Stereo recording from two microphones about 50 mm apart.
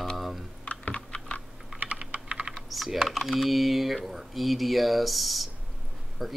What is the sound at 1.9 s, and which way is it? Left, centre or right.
Computer keyboard, right.